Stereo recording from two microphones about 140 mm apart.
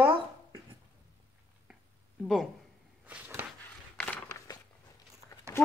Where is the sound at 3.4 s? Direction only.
15° right (ahead or behind).